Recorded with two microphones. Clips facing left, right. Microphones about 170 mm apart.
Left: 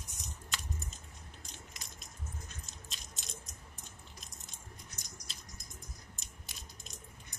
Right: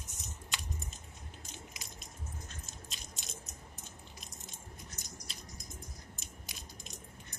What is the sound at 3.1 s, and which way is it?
Keys jangling, centre (ahead or behind).